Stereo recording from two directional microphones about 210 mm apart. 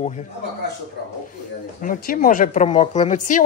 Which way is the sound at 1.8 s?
40° left (ahead or behind).